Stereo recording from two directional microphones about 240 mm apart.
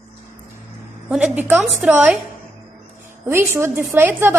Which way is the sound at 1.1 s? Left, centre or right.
Centre.